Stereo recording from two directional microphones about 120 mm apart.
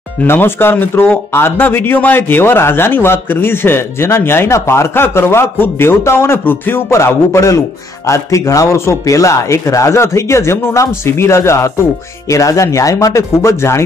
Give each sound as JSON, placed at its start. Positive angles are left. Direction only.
{"t": 0.2, "sound": "speech", "side_deg": 20}